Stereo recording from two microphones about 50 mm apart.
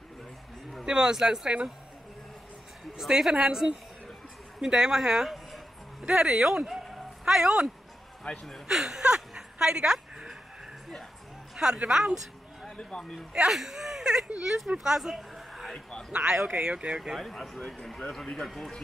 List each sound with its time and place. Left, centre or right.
0.8 s speech: centre
3.0 s speech: centre
8.3 s speech: left
8.6 s a sound: centre
11.5 s a sound: centre
11.9 s speech: centre
12.9 s a man's voice: centre
13.3 s speech: centre
14.8 s a sound: centre
16.1 s speech: right
17.2 s a man's voice: centre